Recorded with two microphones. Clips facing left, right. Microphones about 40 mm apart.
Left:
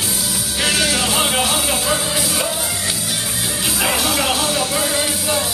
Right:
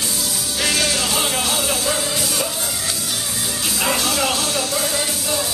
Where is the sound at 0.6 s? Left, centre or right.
Centre.